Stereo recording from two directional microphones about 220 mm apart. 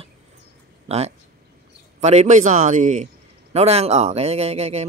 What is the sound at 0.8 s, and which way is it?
Speech, 30° right (ahead or behind).